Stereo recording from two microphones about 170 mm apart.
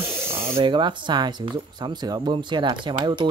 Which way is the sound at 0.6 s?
25° right (ahead or behind).